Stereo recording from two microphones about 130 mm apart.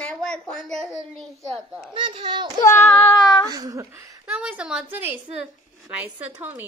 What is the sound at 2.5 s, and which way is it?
Child singing, 20° left (ahead or behind).